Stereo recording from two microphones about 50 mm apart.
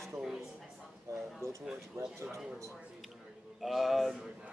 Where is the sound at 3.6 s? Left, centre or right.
Centre.